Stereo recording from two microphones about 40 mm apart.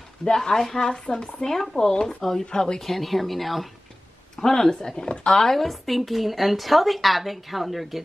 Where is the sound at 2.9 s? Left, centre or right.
Centre.